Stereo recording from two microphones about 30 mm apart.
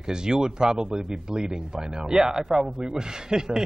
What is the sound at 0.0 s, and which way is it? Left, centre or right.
Speech, right.